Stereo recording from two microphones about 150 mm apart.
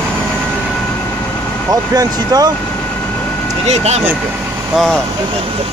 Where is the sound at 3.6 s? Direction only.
45° right (ahead or behind).